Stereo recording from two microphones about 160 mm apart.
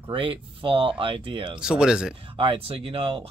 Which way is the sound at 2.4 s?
35° right (ahead or behind).